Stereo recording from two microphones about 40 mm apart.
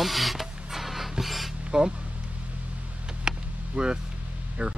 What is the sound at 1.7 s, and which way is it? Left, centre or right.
Speech, centre.